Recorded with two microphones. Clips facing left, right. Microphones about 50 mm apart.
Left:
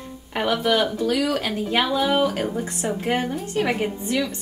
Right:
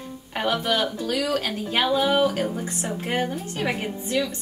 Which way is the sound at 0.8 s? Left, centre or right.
Centre.